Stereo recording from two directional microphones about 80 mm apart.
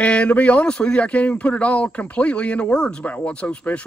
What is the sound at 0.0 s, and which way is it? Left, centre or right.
Speech, centre.